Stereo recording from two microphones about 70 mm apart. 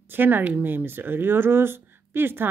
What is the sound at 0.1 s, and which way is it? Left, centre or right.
Speech, right.